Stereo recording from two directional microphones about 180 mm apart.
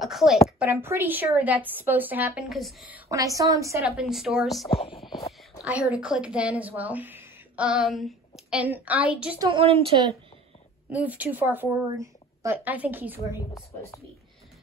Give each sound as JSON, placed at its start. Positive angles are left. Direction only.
{"t": 0.0, "sound": "a woman's voice", "side_deg": 0}
{"t": 3.1, "sound": "a woman's voice", "side_deg": -20}
{"t": 3.9, "sound": "speech", "side_deg": 0}
{"t": 9.4, "sound": "a woman's voice", "side_deg": -30}
{"t": 10.9, "sound": "a woman's voice", "side_deg": -10}